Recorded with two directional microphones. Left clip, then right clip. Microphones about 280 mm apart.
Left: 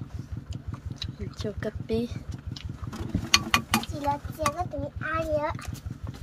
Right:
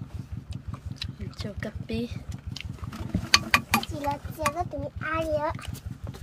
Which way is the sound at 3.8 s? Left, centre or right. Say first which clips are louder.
Left 1 dB; right.